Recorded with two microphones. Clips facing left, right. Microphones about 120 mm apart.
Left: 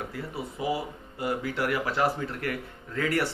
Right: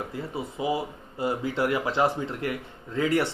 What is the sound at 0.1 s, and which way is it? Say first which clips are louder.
Speech: right 2 dB; 20° right (ahead or behind).